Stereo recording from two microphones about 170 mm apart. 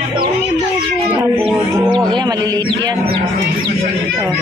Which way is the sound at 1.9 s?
25° right (ahead or behind).